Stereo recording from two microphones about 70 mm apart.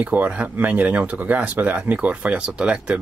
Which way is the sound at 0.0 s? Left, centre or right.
Right.